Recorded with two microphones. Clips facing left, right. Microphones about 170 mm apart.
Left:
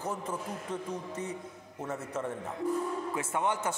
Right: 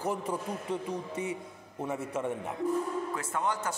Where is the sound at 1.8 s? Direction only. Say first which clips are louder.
Right 2 dB; 10° right (ahead or behind).